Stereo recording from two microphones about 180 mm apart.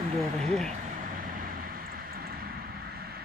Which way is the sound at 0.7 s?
50° right (ahead or behind).